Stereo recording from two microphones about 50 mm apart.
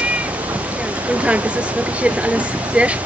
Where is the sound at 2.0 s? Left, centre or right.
Right.